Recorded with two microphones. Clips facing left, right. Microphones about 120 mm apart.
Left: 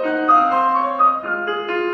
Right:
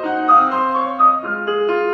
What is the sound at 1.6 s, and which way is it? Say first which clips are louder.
Music: right 4 dB; 25° right (ahead or behind).